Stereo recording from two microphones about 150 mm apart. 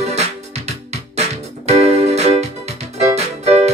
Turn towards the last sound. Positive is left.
turn(degrees=-45)  # may be behind; listen again after turning